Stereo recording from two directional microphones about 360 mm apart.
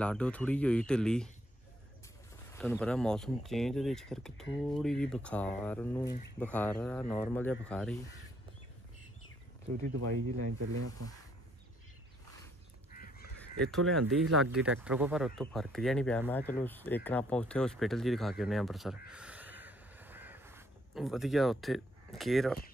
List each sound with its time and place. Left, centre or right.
0.0 s speech: centre
2.6 s speech: centre
9.9 s speech: right
12.9 s goose: left
13.7 s speech: centre
19.0 s crow: centre